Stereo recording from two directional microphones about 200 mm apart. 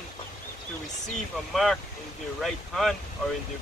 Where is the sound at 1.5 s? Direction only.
Centre (ahead or behind).